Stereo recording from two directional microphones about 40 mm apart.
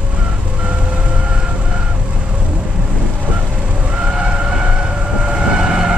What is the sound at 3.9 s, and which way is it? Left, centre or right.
Vehicle, right.